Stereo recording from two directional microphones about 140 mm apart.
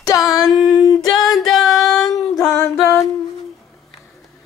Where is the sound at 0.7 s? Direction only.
30° left (ahead or behind).